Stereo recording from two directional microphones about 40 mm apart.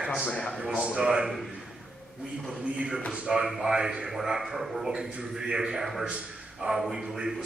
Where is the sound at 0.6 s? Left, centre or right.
Centre.